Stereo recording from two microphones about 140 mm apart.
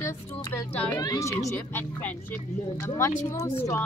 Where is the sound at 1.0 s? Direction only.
25° left (ahead or behind).